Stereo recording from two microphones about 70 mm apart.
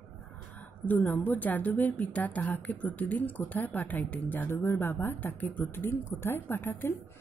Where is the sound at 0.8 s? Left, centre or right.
Left.